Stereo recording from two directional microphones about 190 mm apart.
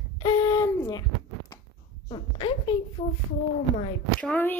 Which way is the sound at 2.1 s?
25° left (ahead or behind).